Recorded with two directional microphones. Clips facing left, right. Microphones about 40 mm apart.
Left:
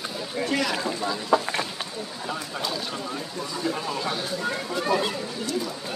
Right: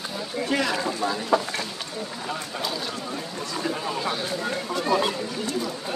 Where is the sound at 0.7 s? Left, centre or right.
Centre.